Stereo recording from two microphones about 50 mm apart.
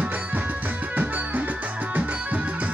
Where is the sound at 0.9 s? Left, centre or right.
Right.